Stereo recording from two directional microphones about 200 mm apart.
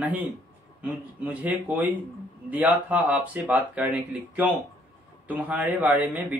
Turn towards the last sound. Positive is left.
turn(degrees=-10)  # may be behind; listen again after turning